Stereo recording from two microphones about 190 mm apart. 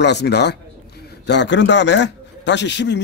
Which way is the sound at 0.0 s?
65° left (ahead or behind).